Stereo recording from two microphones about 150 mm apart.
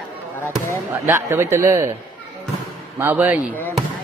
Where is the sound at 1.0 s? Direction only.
15° right (ahead or behind).